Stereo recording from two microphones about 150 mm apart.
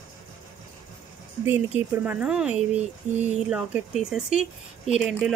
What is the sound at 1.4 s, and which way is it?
Speech, 15° right (ahead or behind).